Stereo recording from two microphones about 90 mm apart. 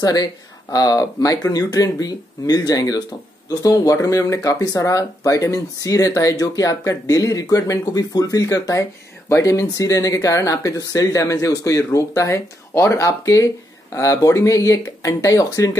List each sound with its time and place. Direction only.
0.0 s speech: 45° left (ahead or behind)